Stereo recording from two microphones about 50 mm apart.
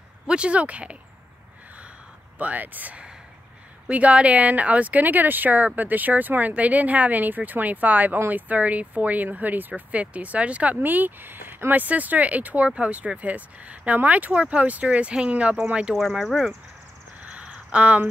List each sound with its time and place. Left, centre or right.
0.3 s speech: right
2.3 s speech: right
10.8 s speech: right
15.9 s speech: centre
17.2 s a sound: right